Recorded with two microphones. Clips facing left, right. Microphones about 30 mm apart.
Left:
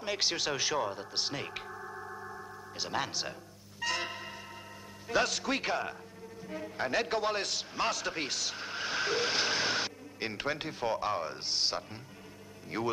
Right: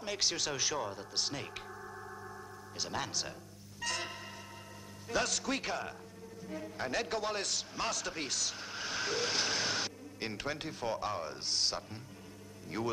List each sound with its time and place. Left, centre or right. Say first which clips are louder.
0.0 s a man's voice: left 3 dB; centre
3.8 s music: left 4 dB; centre
5.0 s a man's voice: left 4 dB; centre